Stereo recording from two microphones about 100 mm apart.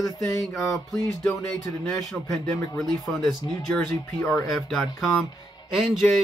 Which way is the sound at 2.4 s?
35° left (ahead or behind).